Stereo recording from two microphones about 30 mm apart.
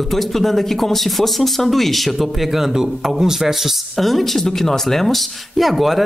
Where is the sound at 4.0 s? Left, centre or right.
Centre.